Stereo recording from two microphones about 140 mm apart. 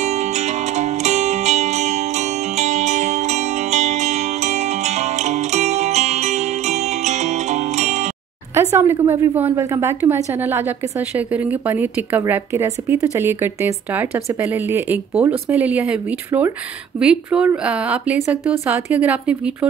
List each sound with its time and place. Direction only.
0.7 s zither: 55° right (ahead or behind)
8.5 s a sound: 15° right (ahead or behind)
9.0 s a woman's voice: 15° right (ahead or behind)